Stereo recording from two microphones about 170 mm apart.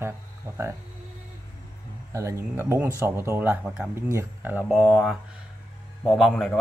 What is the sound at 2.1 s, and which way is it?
A man's voice, 15° right (ahead or behind).